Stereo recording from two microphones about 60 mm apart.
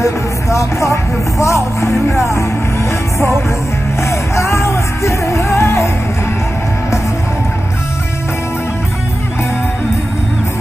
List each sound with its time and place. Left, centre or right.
0.0 s speech: left
2.3 s music: left